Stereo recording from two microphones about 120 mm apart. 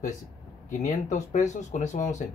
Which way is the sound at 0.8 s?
85° left.